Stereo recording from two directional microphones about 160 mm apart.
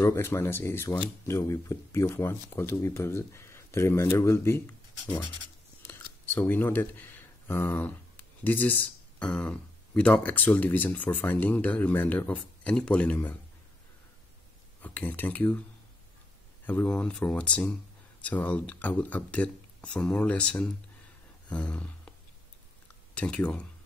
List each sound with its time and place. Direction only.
0.0 s speech: 15° left (ahead or behind)
14.8 s speech: 10° left (ahead or behind)
16.6 s speech: 10° left (ahead or behind)
21.5 s a sound: 10° left (ahead or behind)
23.1 s speech: 5° left (ahead or behind)